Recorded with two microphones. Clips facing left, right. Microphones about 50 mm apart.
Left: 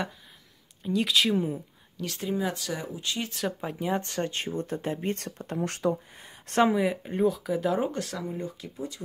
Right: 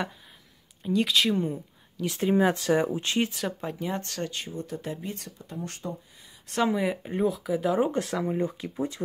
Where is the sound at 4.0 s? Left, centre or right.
Left.